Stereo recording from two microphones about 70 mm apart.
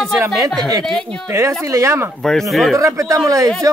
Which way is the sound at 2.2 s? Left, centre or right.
Centre.